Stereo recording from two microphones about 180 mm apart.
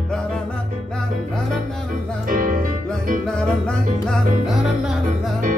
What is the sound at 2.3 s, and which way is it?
Music, 50° right (ahead or behind).